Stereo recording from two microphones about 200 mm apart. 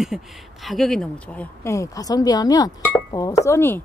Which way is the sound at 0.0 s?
Centre (ahead or behind).